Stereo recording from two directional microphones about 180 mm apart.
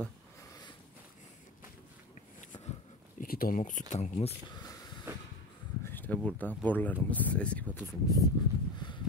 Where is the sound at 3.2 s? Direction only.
55° left (ahead or behind).